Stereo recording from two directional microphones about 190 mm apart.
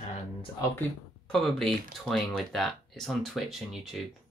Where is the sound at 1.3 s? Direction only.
Centre (ahead or behind).